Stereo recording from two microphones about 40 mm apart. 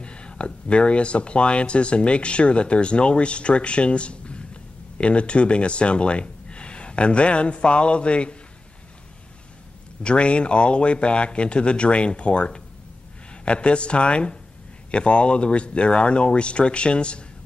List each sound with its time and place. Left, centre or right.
0.0 s speech: left
10.0 s speech: left